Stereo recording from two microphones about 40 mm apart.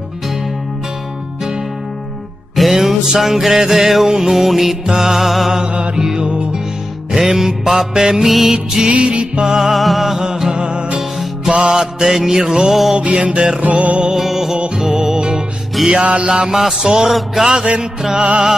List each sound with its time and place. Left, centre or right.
2.5 s music: centre
5.6 s music: right
7.1 s music: centre
8.9 s music: right
9.6 s music: centre
10.2 s music: centre
11.0 s music: centre
13.6 s music: right
14.1 s music: centre; by 16.3 s right
16.3 s music: centre
17.1 s music: centre
18.2 s music: centre